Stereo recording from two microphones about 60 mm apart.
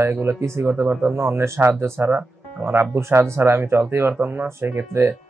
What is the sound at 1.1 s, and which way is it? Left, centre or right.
Speech, right.